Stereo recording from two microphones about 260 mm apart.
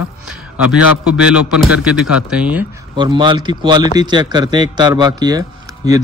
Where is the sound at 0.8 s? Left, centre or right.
Left.